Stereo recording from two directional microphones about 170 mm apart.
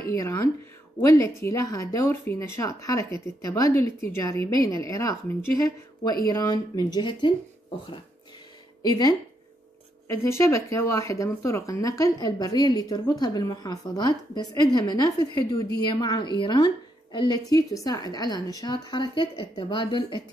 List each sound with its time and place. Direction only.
0.1 s a woman's voice: 20° left (ahead or behind)
8.8 s a woman's voice: 25° left (ahead or behind)